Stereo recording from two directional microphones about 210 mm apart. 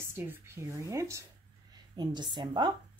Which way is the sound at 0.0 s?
10° right (ahead or behind).